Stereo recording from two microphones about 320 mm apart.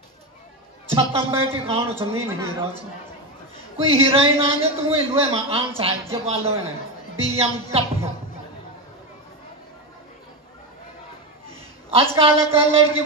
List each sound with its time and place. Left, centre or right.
0.9 s a man's voice: centre
11.9 s a man's voice: centre